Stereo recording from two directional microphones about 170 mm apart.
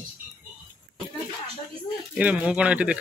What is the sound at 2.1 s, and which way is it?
Speech, 10° right (ahead or behind).